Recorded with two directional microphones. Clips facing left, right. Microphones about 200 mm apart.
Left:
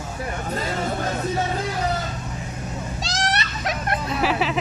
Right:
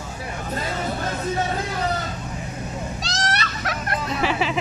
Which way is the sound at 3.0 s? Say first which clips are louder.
Left 3 dB; 25° left (ahead or behind).